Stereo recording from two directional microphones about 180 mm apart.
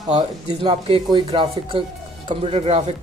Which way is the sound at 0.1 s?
25° right (ahead or behind).